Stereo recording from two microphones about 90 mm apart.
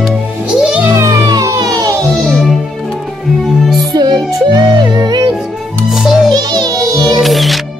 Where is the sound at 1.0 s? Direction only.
40° right (ahead or behind).